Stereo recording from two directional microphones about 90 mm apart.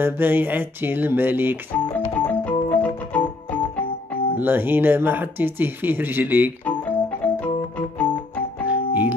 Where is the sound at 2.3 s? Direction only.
15° left (ahead or behind).